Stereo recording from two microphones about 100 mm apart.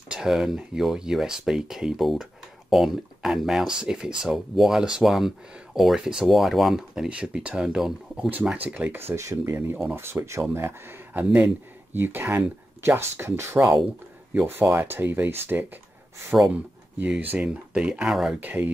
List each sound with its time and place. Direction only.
0.1 s speech: 5° right (ahead or behind)
9.0 s speech: 30° right (ahead or behind)
17.0 s speech: 15° right (ahead or behind)
18.4 s speech: 15° right (ahead or behind)